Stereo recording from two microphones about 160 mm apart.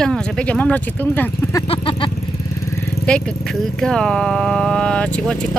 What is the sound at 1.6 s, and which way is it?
Speech, 35° left (ahead or behind).